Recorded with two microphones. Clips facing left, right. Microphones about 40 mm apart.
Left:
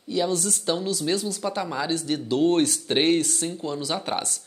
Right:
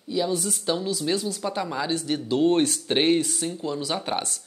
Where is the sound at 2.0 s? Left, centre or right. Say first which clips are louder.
Even; right.